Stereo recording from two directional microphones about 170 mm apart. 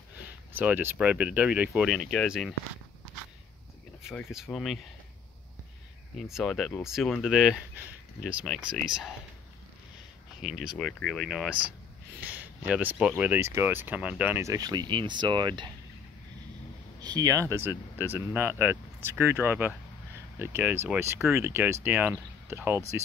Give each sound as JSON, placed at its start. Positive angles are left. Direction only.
{"t": 0.6, "sound": "speech", "side_deg": -10}
{"t": 4.3, "sound": "speech", "side_deg": 0}
{"t": 6.1, "sound": "speech", "side_deg": 0}
{"t": 10.4, "sound": "speech", "side_deg": -5}
{"t": 17.0, "sound": "speech", "side_deg": -25}